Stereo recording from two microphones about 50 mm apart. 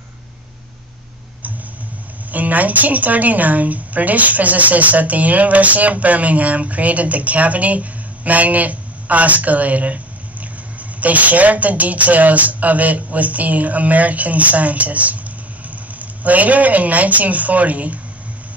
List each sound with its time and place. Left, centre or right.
2.3 s a woman's voice: right